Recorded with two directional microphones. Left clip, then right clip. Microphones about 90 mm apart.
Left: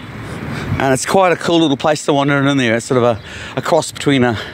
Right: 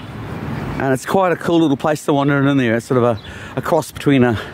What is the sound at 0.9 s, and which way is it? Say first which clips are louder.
Speech: left 3 dB; 20° right (ahead or behind).